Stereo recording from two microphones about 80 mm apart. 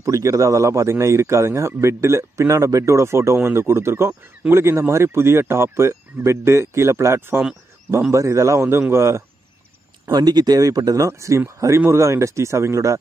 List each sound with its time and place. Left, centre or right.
0.0 s a man's voice: right
8.1 s a man's voice: right
10.1 s speech: right
11.1 s a man's voice: right